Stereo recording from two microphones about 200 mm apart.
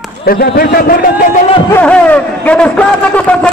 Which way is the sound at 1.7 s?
5° left (ahead or behind).